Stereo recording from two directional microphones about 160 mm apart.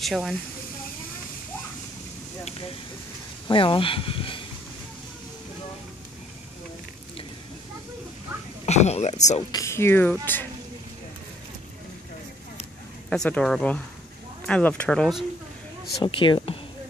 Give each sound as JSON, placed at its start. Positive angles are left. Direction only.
{"t": 0.0, "sound": "speech", "side_deg": 0}
{"t": 3.4, "sound": "speech", "side_deg": 30}
{"t": 8.6, "sound": "speech", "side_deg": 45}
{"t": 9.5, "sound": "speech", "side_deg": 20}
{"t": 13.1, "sound": "speech", "side_deg": 5}
{"t": 16.0, "sound": "speech", "side_deg": 30}